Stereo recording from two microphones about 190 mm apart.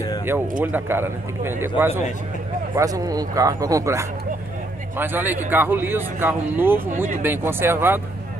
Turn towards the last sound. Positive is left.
turn(degrees=-10)  # may be behind; listen again after turning